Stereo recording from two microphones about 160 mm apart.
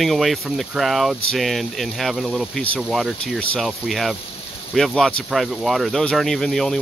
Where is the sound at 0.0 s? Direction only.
Centre (ahead or behind).